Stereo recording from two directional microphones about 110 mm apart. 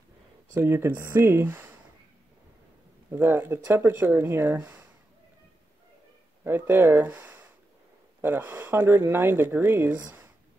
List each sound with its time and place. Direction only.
0.6 s speech: 20° right (ahead or behind)
3.1 s speech: 20° right (ahead or behind)
6.4 s speech: 20° right (ahead or behind)